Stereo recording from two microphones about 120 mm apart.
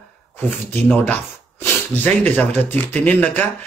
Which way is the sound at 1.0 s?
15° left (ahead or behind).